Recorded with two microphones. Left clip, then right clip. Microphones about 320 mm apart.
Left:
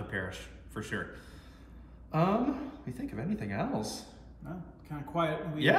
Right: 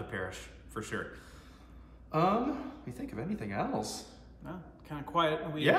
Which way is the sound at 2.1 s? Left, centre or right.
Centre.